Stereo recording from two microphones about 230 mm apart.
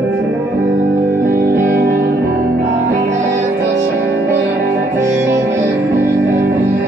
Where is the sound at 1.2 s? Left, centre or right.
Right.